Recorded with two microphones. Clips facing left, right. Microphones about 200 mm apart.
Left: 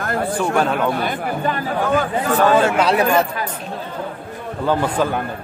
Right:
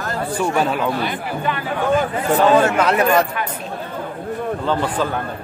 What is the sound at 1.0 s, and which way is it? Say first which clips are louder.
Speech: left 1 dB; 50° left (ahead or behind).